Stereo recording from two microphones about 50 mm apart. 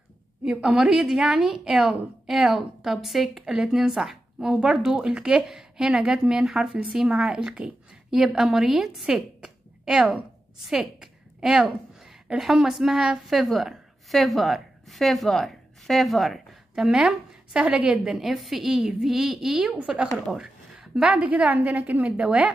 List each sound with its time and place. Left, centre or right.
0.5 s a woman's voice: centre
3.5 s a woman's voice: centre
4.6 s speech: right
4.8 s a woman's voice: centre
5.5 s a sound: centre
5.9 s a woman's voice: centre
16.8 s a woman's voice: centre
17.7 s speech: right
18.0 s a woman's voice: centre
19.8 s speech: right
20.3 s a sound: centre
21.1 s a woman's voice: right